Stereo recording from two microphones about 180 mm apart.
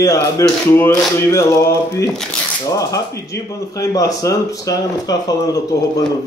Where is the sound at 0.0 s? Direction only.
15° left (ahead or behind).